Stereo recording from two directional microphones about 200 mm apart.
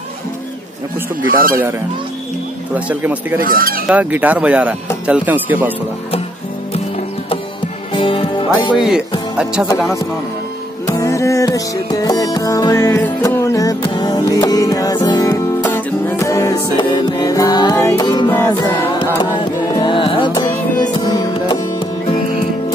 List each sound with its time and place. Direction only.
1.3 s fowl: 45° right (ahead or behind)
2.7 s speech: 5° right (ahead or behind)
3.4 s fowl: 45° right (ahead or behind)
3.9 s speech: 10° right (ahead or behind)
7.9 s music: 25° left (ahead or behind)
8.7 s speech: centre (ahead or behind)
10.9 s music: 15° left (ahead or behind)